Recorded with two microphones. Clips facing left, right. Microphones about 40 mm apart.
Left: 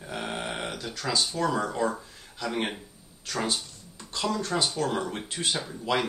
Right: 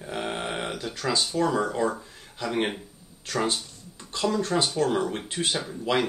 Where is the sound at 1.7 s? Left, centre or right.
Centre.